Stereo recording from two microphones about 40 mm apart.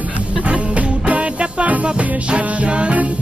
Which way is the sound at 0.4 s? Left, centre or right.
Right.